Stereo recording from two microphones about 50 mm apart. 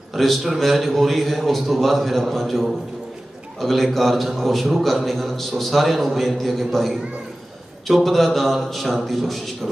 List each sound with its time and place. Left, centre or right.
0.1 s a man's voice: centre
3.6 s a man's voice: centre